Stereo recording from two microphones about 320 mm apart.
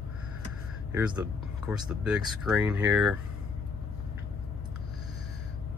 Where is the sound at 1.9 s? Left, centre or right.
Centre.